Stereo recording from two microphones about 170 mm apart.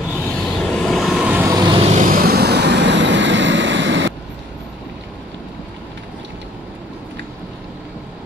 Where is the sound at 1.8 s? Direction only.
45° right (ahead or behind); by 4.1 s 90° right.